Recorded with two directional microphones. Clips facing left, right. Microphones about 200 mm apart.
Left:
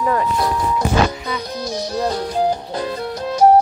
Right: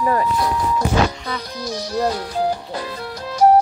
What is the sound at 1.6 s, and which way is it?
Music, 25° left (ahead or behind).